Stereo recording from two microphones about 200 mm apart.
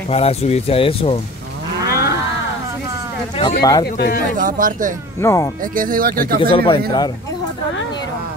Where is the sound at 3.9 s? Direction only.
50° left (ahead or behind).